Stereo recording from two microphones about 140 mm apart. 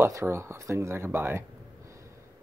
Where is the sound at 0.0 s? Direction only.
20° right (ahead or behind).